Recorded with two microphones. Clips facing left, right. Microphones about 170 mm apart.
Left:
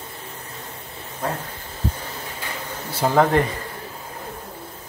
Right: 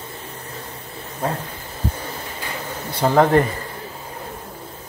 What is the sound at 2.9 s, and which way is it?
Speech, 5° left (ahead or behind).